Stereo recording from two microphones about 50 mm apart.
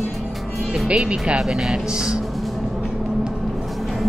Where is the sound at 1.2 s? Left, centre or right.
Centre.